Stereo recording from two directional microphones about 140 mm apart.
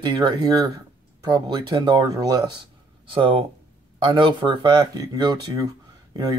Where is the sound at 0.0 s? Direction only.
30° right (ahead or behind).